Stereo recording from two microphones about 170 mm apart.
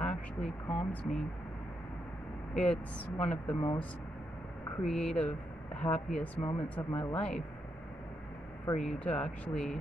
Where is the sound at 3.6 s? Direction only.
20° left (ahead or behind).